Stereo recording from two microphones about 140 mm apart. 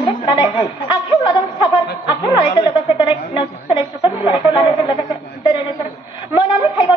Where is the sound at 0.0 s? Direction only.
35° left (ahead or behind).